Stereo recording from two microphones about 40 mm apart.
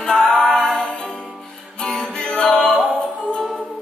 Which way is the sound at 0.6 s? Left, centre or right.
Centre.